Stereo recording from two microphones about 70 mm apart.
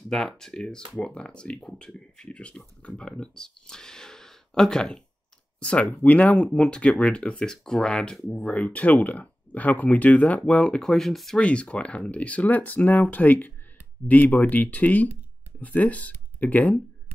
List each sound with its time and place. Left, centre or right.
0.1 s speech: centre
10.8 s speech: centre
11.3 s speech: centre